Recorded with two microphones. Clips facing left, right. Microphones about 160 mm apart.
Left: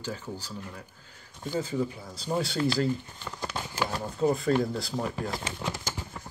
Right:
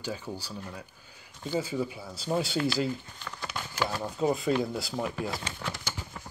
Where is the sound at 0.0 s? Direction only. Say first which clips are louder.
Even; 15° right (ahead or behind).